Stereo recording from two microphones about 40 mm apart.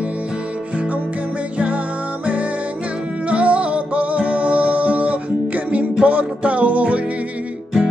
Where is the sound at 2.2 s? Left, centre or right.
Right.